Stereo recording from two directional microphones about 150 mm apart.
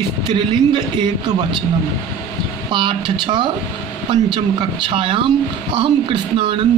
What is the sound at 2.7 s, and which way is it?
Speech, 30° right (ahead or behind).